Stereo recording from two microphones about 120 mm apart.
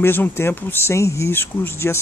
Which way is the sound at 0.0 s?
20° left (ahead or behind).